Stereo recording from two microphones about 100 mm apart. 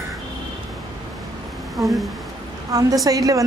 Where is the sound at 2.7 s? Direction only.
40° right (ahead or behind).